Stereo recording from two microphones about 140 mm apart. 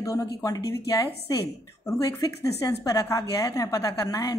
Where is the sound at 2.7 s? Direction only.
25° left (ahead or behind).